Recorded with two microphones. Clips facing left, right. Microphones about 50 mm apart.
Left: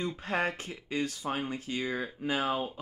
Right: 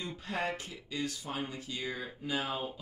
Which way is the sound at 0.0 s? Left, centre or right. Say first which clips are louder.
Left 5 dB; left.